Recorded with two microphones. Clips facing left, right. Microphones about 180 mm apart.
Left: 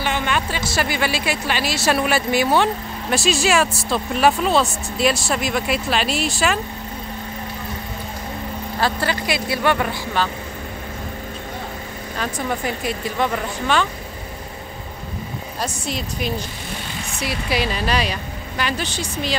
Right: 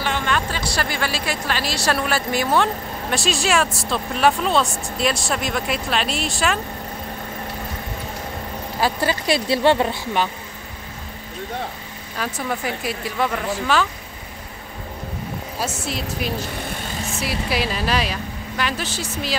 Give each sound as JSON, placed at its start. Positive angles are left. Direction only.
{"t": 0.0, "sound": "music", "side_deg": 5}
{"t": 1.2, "sound": "speech", "side_deg": 5}
{"t": 8.7, "sound": "a woman's voice", "side_deg": -10}
{"t": 9.2, "sound": "speech", "side_deg": -30}
{"t": 12.2, "sound": "speech", "side_deg": -5}
{"t": 15.6, "sound": "speech", "side_deg": -5}